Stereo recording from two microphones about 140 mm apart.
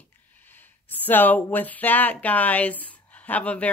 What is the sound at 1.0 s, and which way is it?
Speech, 15° left (ahead or behind).